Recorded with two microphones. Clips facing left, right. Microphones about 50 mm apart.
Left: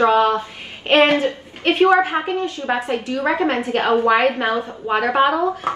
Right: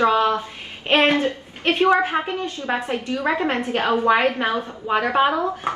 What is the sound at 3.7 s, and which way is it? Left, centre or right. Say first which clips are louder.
Speech: left 2 dB; left.